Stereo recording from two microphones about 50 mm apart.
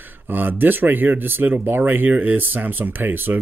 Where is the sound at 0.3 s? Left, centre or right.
Right.